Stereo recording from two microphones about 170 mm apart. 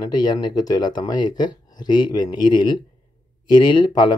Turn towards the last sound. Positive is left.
turn(degrees=25)  # may be behind; listen again after turning